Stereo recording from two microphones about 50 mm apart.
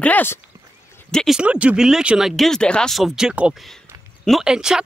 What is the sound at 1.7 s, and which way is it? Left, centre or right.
Speech, centre.